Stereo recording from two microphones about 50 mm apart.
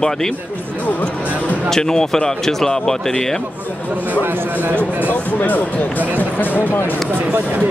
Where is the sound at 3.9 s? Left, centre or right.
Right.